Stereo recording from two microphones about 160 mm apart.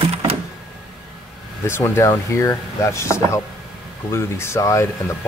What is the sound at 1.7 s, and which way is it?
Speech, 15° left (ahead or behind).